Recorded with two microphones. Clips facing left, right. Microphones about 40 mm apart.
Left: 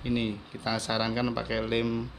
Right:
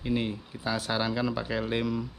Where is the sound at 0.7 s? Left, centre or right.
Centre.